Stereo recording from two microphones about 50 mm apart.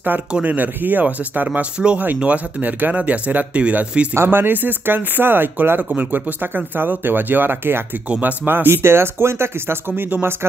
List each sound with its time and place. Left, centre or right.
0.3 s speech: right
4.1 s speech: right
8.1 s speech: right
8.6 s speech: right